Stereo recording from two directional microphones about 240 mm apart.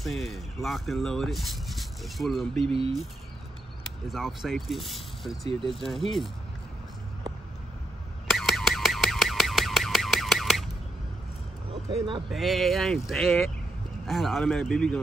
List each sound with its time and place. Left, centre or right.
0.0 s speech: centre
2.5 s speech: right
4.1 s speech: centre
8.3 s car alarm: centre
12.3 s speech: centre